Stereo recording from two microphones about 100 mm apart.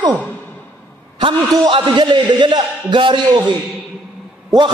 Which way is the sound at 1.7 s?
50° right (ahead or behind).